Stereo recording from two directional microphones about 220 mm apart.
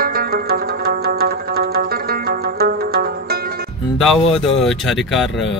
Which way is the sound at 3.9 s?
Centre (ahead or behind).